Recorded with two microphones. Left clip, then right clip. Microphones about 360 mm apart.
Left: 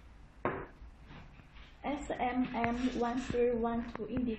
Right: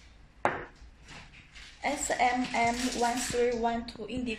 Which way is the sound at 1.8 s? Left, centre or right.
Right.